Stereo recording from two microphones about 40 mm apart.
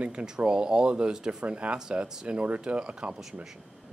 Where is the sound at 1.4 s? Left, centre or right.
Right.